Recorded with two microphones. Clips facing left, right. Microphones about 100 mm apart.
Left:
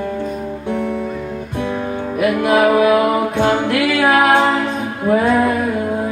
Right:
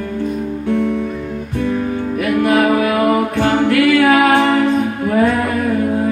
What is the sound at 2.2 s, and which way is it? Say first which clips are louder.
Music: even; 15° left (ahead or behind).